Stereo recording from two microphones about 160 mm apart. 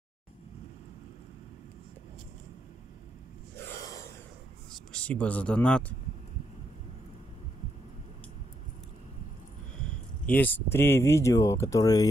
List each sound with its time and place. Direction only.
3.5 s a sound: 15° left (ahead or behind)
4.9 s speech: 10° left (ahead or behind)
10.2 s speech: 10° left (ahead or behind)